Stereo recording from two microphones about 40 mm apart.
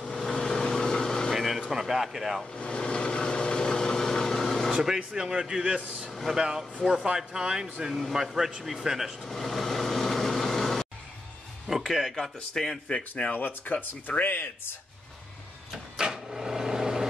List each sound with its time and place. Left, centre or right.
0.1 s vehicle: centre
1.3 s a sound: centre
1.7 s a man's voice: centre
2.5 s vehicle: left; by 4.7 s centre
4.7 s speech: centre
9.2 s vehicle: centre
11.9 s speech: centre
13.4 s speech: left
14.3 s speech: left
16.0 s microwave oven: centre